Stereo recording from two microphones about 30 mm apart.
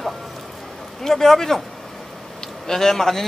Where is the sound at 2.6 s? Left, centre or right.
Centre.